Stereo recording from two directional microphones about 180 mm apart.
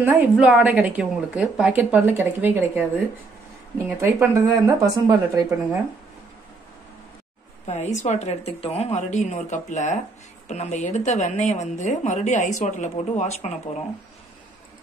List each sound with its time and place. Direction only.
0.0 s a woman's voice: 10° right (ahead or behind)
4.2 s a woman's voice: 15° right (ahead or behind)
7.6 s a woman's voice: 40° left (ahead or behind)